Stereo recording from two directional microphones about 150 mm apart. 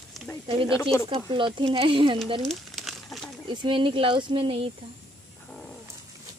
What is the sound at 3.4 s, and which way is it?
Speech, 30° right (ahead or behind).